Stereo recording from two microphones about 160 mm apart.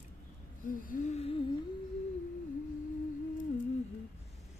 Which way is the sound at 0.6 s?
55° left (ahead or behind).